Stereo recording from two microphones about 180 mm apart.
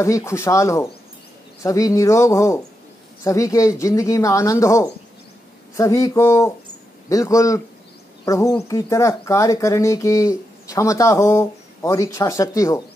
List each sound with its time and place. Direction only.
0.0 s speech: 15° left (ahead or behind)